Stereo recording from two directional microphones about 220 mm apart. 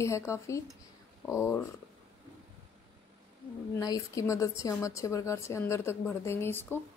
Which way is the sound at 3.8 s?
15° left (ahead or behind).